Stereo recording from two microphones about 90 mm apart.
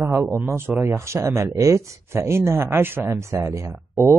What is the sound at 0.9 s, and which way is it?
Speech, 35° right (ahead or behind).